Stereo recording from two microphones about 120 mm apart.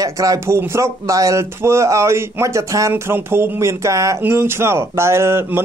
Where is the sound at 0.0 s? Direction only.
30° right (ahead or behind).